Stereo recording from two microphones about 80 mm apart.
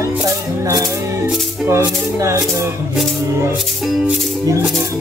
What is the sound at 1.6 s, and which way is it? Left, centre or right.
Music, right.